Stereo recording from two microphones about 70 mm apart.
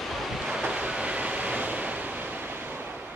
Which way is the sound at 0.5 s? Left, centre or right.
Centre.